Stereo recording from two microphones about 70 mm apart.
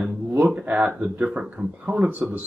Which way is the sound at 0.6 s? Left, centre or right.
Right.